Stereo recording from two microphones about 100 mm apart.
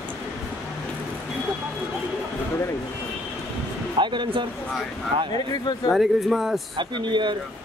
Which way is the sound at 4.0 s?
50° right (ahead or behind).